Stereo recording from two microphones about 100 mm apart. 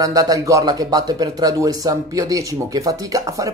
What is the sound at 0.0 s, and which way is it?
Speech, 35° right (ahead or behind).